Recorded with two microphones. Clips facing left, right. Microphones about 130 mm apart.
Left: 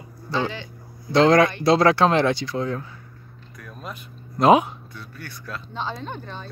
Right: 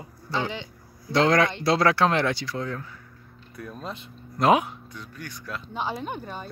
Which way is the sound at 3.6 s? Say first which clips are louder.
Right 2 dB; 30° right (ahead or behind).